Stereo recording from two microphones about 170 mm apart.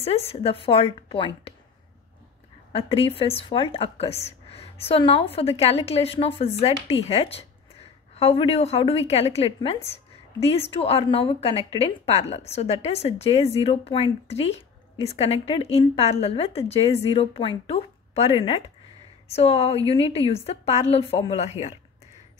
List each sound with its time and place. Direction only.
0.0 s a woman's voice: 35° left (ahead or behind)
2.7 s a woman's voice: 35° left (ahead or behind)